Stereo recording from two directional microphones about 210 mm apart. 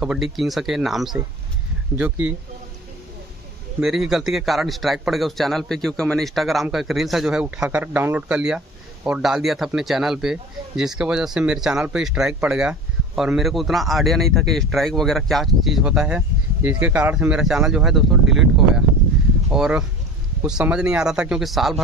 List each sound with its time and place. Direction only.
0.0 s a man's voice: 5° right (ahead or behind)
3.8 s a man's voice: centre (ahead or behind)
18.2 s a sound: 60° right (ahead or behind)
19.5 s a man's voice: 5° right (ahead or behind)